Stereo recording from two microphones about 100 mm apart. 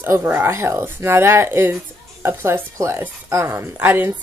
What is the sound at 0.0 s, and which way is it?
Speech, 20° right (ahead or behind).